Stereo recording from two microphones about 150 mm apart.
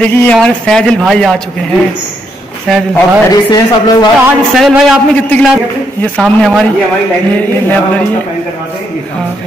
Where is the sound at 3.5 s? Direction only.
25° left (ahead or behind).